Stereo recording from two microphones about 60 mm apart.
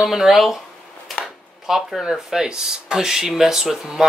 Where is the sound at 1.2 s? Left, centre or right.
Centre.